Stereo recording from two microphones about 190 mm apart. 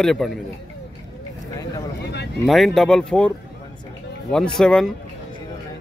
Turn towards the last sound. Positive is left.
turn(degrees=0)  # may be behind; listen again after turning